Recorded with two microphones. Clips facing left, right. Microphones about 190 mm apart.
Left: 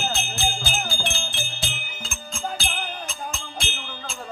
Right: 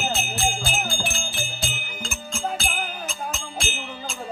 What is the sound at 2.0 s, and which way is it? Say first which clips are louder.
Music: right 3 dB; 5° right (ahead or behind).